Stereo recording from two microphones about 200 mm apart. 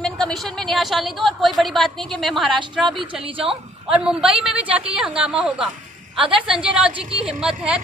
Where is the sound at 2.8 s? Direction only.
25° right (ahead or behind).